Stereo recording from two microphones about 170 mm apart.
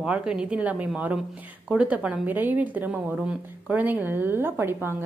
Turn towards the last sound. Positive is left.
turn(degrees=-10)  # may be behind; listen again after turning